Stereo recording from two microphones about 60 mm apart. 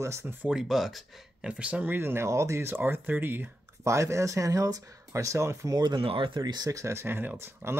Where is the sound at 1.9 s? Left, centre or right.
Right.